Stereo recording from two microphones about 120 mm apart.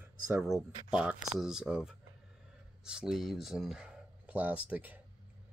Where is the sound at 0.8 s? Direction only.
5° right (ahead or behind).